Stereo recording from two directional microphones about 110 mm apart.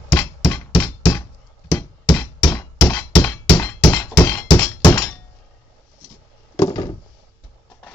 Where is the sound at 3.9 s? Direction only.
25° left (ahead or behind).